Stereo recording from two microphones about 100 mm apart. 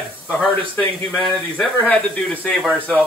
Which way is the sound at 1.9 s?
10° left (ahead or behind).